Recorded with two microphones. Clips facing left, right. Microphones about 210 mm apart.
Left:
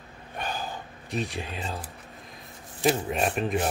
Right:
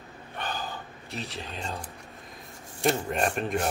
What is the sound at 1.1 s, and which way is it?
Speech, 15° left (ahead or behind).